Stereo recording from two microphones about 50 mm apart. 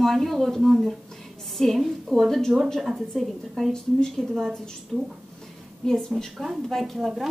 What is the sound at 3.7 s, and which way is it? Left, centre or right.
Speech, centre.